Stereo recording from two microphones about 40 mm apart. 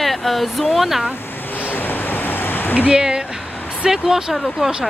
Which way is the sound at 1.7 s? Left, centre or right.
Left.